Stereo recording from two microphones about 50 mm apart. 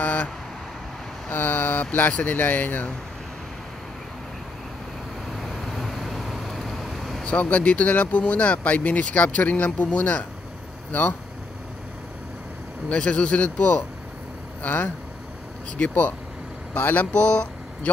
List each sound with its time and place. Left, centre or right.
0.0 s vehicle: left
1.3 s speech: left
5.3 s vehicle: centre
7.2 s speech: left
10.9 s speech: left
12.9 s speech: left